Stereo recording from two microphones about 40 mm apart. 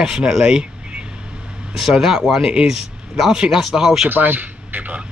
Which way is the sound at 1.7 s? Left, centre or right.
Centre.